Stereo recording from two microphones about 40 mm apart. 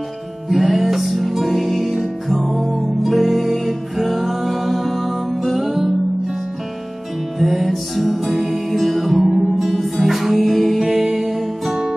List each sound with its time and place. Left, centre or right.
0.5 s music: centre
7.3 s music: centre